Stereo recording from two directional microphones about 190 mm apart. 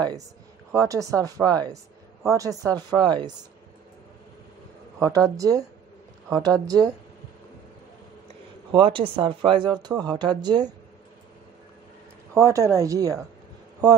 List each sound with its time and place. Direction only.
0.7 s speech: 15° right (ahead or behind)
4.9 s speech: 15° right (ahead or behind)
8.7 s speech: 25° right (ahead or behind)
12.4 s speech: 15° right (ahead or behind)